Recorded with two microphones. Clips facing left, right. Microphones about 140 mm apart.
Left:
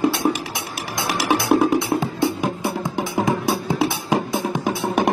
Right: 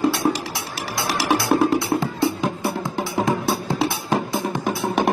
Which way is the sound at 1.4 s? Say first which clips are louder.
Left 2 dB; 20° left (ahead or behind).